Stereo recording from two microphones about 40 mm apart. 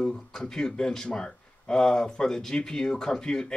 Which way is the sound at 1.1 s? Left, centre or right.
Left.